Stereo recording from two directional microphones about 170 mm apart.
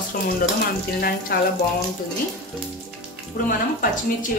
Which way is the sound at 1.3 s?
65° left (ahead or behind).